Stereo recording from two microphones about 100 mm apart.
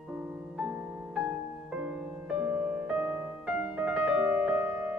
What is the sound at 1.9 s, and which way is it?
Music, 10° right (ahead or behind).